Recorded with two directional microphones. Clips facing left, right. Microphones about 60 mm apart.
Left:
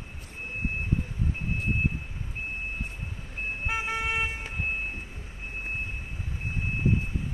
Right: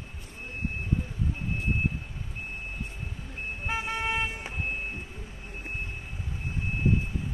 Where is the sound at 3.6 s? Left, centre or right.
Centre.